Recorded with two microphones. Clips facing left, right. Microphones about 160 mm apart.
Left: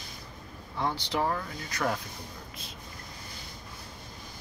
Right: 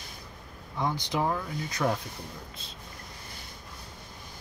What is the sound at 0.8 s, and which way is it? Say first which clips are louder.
Speech: right 1 dB; 15° right (ahead or behind).